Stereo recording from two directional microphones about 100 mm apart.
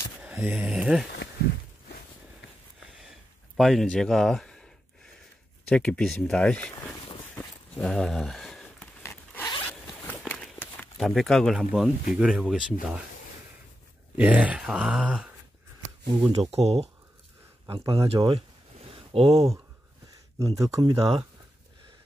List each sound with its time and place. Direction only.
0.2 s a sound: 20° right (ahead or behind)
0.7 s speech: 5° right (ahead or behind)
3.0 s a sound: centre (ahead or behind)
5.7 s speech: 10° left (ahead or behind)
7.7 s a sound: 5° left (ahead or behind)
9.1 s zipper: 15° left (ahead or behind)
10.0 s walk: 15° left (ahead or behind)
11.0 s speech: centre (ahead or behind)
11.5 s speech: 5° right (ahead or behind)
14.1 s speech: 15° right (ahead or behind)
16.1 s speech: 50° right (ahead or behind)
16.3 s speech: 90° right
18.0 s a sound: 75° right (ahead or behind); by 19.5 s 90° right
20.3 s speech: 35° right (ahead or behind)